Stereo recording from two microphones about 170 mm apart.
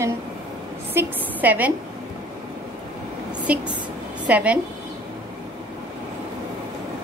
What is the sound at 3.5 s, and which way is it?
A woman's voice, 10° right (ahead or behind).